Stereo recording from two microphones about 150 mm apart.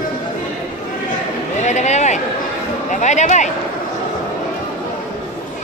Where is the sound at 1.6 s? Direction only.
50° left (ahead or behind).